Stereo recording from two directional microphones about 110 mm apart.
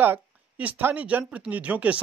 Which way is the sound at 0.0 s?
15° right (ahead or behind).